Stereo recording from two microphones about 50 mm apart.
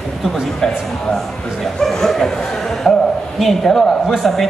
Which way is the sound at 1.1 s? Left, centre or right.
Centre.